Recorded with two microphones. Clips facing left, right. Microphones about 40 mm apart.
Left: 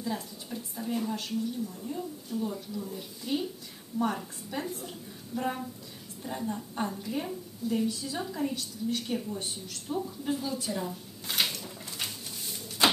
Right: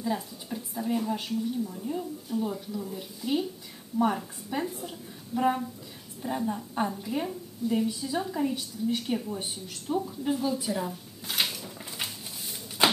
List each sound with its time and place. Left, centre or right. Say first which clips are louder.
0.0 s a woman's voice: right 4 dB; centre
4.5 s a woman's voice: right 4 dB; centre
12.8 s a sound: right 1 dB; centre